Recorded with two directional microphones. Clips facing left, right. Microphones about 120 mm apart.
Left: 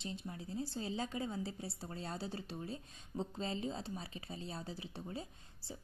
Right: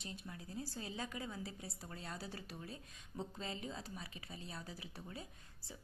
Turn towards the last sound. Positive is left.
turn(degrees=30)  # may be behind; listen again after turning